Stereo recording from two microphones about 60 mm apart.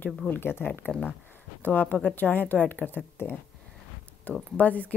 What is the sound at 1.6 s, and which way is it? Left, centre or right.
A woman's voice, left.